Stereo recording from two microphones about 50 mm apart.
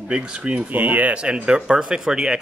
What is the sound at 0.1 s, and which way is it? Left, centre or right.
Speech, right.